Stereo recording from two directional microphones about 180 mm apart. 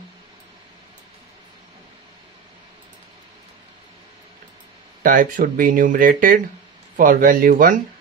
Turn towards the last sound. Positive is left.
turn(degrees=-50)  # may be behind; listen again after turning